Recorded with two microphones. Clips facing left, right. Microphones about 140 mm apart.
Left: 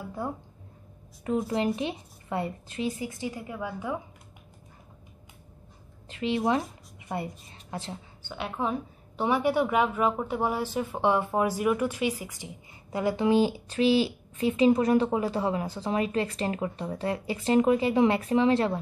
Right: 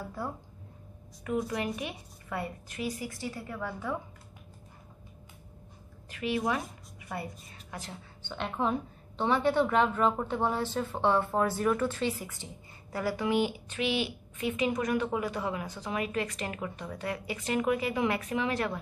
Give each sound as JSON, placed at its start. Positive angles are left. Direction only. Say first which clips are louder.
{"t": 1.2, "sound": "a woman's voice", "louder": "left 5 dB", "side_deg": 30}
{"t": 6.0, "sound": "a woman's voice", "louder": "left 4 dB", "side_deg": 25}
{"t": 8.2, "sound": "a woman's voice", "louder": "even", "side_deg": 10}